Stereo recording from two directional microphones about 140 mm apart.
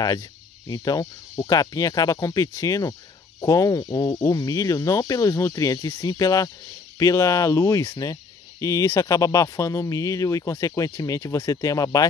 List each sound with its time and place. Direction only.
0.7 s speech: 25° left (ahead or behind)